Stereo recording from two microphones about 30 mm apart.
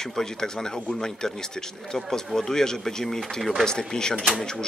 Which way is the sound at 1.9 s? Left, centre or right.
Centre.